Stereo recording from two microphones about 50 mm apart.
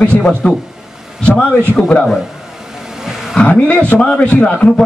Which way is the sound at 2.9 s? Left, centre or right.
Centre.